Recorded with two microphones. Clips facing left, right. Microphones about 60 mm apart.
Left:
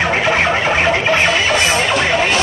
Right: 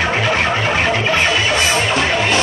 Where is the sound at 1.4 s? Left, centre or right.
Left.